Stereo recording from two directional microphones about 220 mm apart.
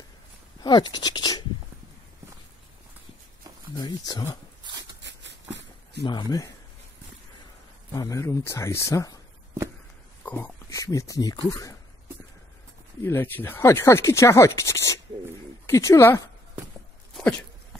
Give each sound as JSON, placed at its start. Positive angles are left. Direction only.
{"t": 0.6, "sound": "speech", "side_deg": 20}
{"t": 3.7, "sound": "speech", "side_deg": 15}
{"t": 5.0, "sound": "a sound", "side_deg": -55}
{"t": 6.0, "sound": "speech", "side_deg": 20}
{"t": 7.9, "sound": "speech", "side_deg": 15}
{"t": 10.2, "sound": "speech", "side_deg": 10}
{"t": 13.0, "sound": "speech", "side_deg": 10}
{"t": 17.1, "sound": "dog", "side_deg": 5}